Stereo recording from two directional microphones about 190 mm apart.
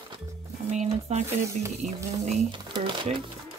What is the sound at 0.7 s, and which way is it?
Speech, 35° right (ahead or behind).